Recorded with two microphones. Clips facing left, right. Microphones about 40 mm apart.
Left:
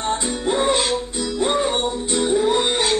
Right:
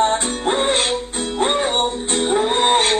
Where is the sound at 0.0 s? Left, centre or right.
Right.